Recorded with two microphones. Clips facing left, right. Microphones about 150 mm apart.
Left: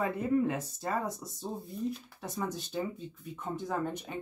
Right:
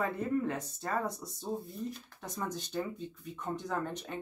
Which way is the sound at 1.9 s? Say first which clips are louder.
Left 4 dB; 5° left (ahead or behind).